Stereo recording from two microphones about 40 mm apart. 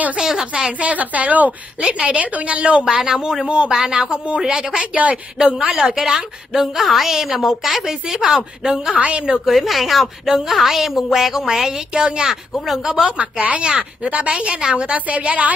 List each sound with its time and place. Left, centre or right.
0.2 s a woman's voice: centre
0.5 s a woman's voice: right
1.8 s a woman's voice: right
2.8 s a woman's voice: centre
3.4 s a woman's voice: right
6.0 s a woman's voice: centre
8.9 s a woman's voice: right
9.5 s a woman's voice: centre
12.9 s speech: right
14.0 s a woman's voice: right
15.0 s a woman's voice: right